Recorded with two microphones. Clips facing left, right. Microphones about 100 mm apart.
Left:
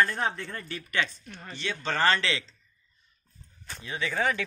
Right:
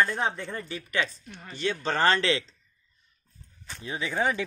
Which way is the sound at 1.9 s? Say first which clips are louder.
Right 1 dB; 30° right (ahead or behind).